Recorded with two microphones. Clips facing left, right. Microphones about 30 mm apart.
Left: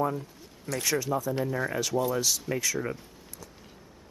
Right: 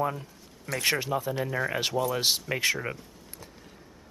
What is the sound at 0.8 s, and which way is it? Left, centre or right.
Speech, right.